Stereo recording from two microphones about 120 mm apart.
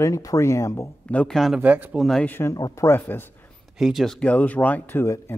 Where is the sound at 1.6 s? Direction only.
15° right (ahead or behind).